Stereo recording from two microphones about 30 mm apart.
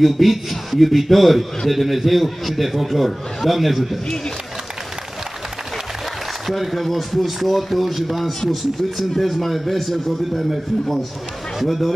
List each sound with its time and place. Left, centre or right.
0.0 s a man's voice: centre
6.4 s a man's voice: centre
8.4 s a man's voice: centre
11.6 s a man's voice: centre